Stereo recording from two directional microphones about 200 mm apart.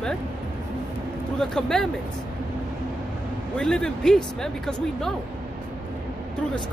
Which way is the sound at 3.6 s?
5° left (ahead or behind).